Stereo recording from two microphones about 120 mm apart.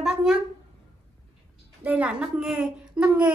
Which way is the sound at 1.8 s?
10° right (ahead or behind).